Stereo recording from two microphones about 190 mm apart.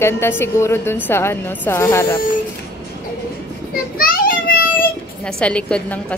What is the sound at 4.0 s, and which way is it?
Child singing, 50° left (ahead or behind).